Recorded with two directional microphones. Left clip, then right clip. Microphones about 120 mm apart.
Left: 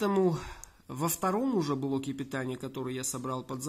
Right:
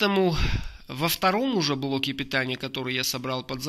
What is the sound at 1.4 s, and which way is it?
Speech, 5° right (ahead or behind).